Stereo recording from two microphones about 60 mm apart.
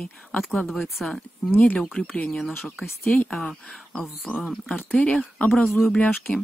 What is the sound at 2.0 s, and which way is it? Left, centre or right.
Speech, centre.